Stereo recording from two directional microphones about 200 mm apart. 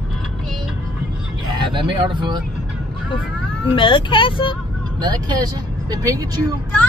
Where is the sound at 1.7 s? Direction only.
25° right (ahead or behind).